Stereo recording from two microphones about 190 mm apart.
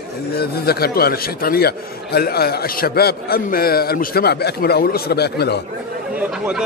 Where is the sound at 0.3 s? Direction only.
55° left (ahead or behind).